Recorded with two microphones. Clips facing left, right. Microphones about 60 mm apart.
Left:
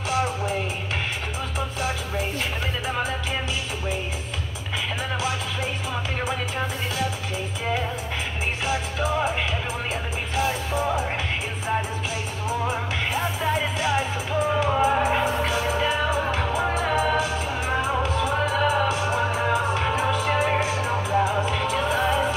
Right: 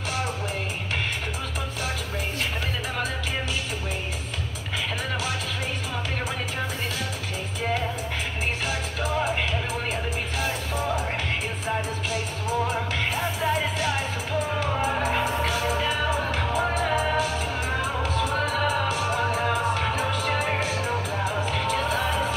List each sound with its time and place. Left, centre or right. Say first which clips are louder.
12.6 s music: left 1 dB; centre
18.3 s music: left 4 dB; centre